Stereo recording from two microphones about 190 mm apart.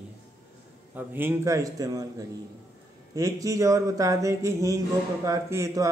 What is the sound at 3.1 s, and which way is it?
A man's voice, 15° right (ahead or behind).